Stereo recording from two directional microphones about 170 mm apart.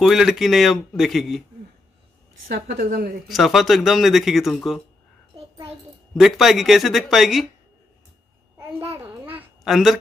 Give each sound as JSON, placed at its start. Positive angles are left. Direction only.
{"t": 0.0, "sound": "speech", "side_deg": 0}
{"t": 2.4, "sound": "a woman's voice", "side_deg": -60}
{"t": 3.3, "sound": "speech", "side_deg": 0}
{"t": 6.1, "sound": "speech", "side_deg": 0}
{"t": 8.5, "sound": "babbling", "side_deg": -15}